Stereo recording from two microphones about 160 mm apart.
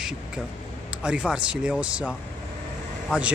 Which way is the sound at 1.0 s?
5° right (ahead or behind).